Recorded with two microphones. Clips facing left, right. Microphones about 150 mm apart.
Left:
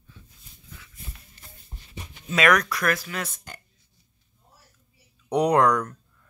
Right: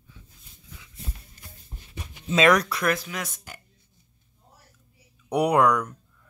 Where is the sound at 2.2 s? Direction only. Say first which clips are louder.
Right 2 dB; 25° right (ahead or behind).